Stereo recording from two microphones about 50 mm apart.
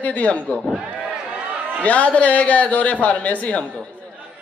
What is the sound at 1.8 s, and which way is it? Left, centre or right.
Speech, left.